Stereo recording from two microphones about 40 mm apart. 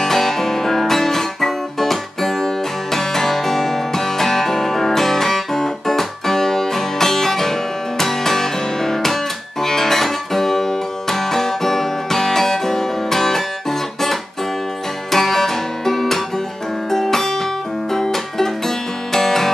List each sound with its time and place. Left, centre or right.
0.0 s music: centre
15.0 s guitar: centre
16.9 s music: centre